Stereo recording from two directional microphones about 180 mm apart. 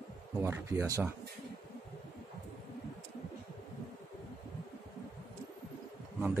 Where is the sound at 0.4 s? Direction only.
15° right (ahead or behind).